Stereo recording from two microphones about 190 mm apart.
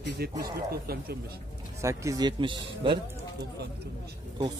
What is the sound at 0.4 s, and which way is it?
Speech, 55° right (ahead or behind).